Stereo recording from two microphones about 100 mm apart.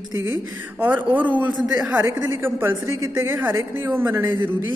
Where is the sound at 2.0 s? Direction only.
25° right (ahead or behind).